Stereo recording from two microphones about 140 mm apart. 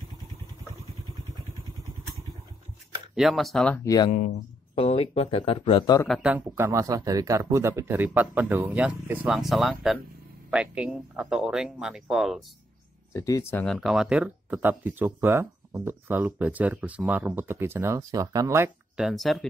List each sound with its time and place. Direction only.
3.2 s speech: centre (ahead or behind)
3.8 s speech: 25° left (ahead or behind)
4.7 s speech: 45° left (ahead or behind)
6.2 s speech: 15° right (ahead or behind)
13.1 s speech: 20° left (ahead or behind)
13.7 s speech: centre (ahead or behind); by 18.7 s 20° right (ahead or behind)
18.9 s speech: centre (ahead or behind)